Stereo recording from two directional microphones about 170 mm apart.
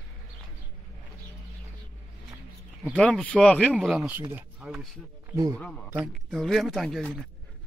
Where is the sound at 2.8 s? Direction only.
10° left (ahead or behind).